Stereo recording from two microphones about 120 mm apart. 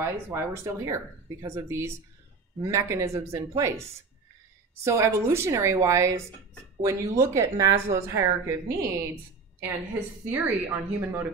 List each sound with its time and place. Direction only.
0.0 s speech: 20° right (ahead or behind)
10.2 s speech: 15° right (ahead or behind)